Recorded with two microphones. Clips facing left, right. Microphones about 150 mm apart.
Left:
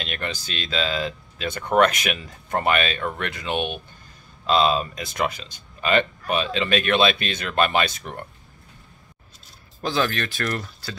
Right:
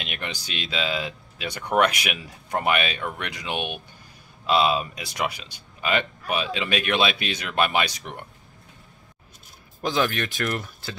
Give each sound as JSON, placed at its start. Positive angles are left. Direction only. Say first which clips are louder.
{"t": 0.0, "sound": "speech", "louder": "left 3 dB", "side_deg": -15}
{"t": 9.8, "sound": "speech", "louder": "even", "side_deg": -15}